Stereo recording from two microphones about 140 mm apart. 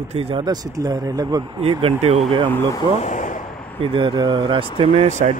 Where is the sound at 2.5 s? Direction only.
15° left (ahead or behind).